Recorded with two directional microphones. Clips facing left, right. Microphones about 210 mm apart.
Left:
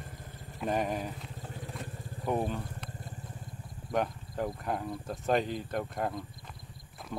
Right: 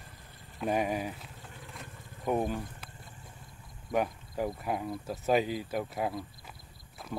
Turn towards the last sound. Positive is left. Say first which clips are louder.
# right 1 dB
turn(degrees=-5)  # may be behind; listen again after turning